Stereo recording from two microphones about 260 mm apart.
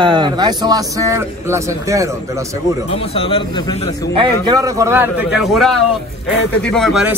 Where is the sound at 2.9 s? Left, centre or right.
Left.